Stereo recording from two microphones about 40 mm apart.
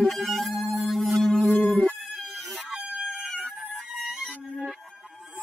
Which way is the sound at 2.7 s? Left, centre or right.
Centre.